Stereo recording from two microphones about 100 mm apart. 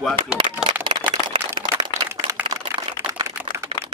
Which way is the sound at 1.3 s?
60° right (ahead or behind).